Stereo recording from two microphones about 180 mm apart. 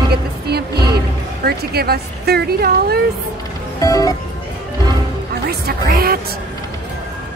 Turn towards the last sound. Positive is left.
turn(degrees=-55)  # may be behind; listen again after turning